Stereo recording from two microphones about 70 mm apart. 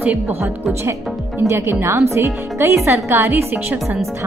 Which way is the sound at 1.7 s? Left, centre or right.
Right.